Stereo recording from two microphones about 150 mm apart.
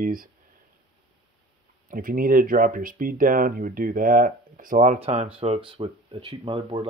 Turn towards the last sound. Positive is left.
turn(degrees=-35)  # may be behind; listen again after turning